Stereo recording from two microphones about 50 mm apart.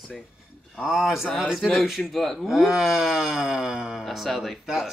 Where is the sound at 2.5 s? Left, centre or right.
Centre.